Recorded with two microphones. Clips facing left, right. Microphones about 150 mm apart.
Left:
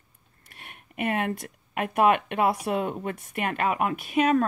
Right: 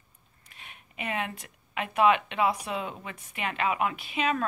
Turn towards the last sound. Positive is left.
turn(degrees=45)  # may be behind; listen again after turning